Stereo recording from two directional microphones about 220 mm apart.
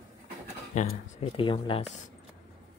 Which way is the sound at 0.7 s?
30° left (ahead or behind).